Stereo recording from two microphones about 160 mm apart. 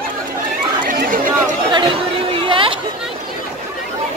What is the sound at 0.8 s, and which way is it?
Chatter, 55° right (ahead or behind).